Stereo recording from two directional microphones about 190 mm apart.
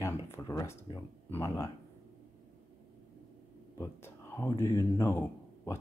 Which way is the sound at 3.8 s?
15° left (ahead or behind).